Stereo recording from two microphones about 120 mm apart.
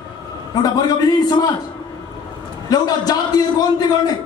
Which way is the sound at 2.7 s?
35° left (ahead or behind).